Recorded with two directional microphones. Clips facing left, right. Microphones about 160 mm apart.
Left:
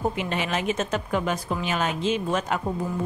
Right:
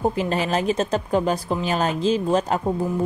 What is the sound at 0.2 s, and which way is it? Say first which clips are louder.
A woman's voice: right 5 dB; 35° right (ahead or behind).